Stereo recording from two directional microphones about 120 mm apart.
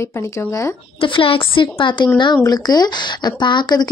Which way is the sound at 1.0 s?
45° left (ahead or behind).